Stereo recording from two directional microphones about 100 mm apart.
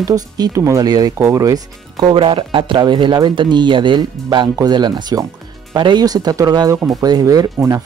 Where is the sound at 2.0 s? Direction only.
60° right (ahead or behind).